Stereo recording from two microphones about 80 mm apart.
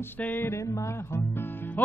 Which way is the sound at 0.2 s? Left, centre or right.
Left.